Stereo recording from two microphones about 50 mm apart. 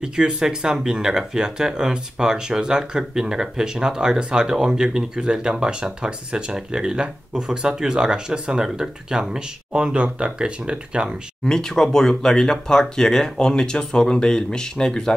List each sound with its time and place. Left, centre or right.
0.0 s speech: centre
11.4 s speech: centre